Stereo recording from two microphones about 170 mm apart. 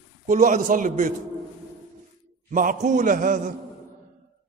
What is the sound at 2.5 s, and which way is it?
A man's voice, 50° right (ahead or behind).